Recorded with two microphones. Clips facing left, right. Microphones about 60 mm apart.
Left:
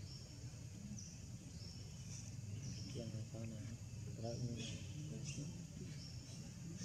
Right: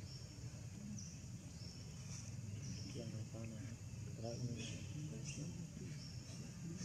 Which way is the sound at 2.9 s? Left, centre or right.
Centre.